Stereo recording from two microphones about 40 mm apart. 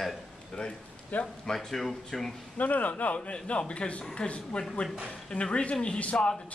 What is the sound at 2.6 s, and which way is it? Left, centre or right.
A man's voice, left.